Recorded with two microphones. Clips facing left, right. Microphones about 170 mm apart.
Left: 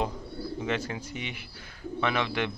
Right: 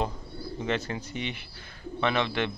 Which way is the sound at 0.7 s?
10° left (ahead or behind).